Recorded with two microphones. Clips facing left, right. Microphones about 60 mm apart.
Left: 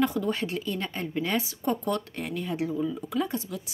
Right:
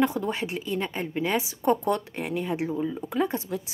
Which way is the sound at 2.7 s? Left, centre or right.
Right.